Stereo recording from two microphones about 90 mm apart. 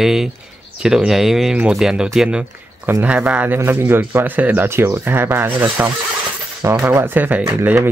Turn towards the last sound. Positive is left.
turn(degrees=-30)  # may be behind; listen again after turning